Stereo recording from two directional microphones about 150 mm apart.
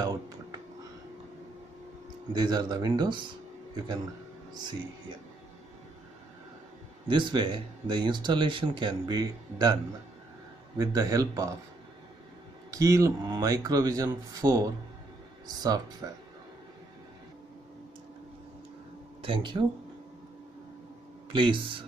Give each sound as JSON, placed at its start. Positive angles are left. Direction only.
{"t": 0.0, "sound": "speech", "side_deg": -25}
{"t": 2.3, "sound": "speech", "side_deg": -25}
{"t": 7.1, "sound": "speech", "side_deg": -30}
{"t": 10.8, "sound": "speech", "side_deg": -25}
{"t": 12.7, "sound": "speech", "side_deg": -20}
{"t": 19.2, "sound": "speech", "side_deg": -35}
{"t": 21.3, "sound": "speech", "side_deg": -35}